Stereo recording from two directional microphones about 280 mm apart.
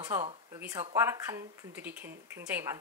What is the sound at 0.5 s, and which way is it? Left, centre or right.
Speech, centre.